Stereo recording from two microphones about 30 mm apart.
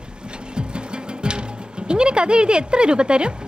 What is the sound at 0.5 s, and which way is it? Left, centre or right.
Music, right.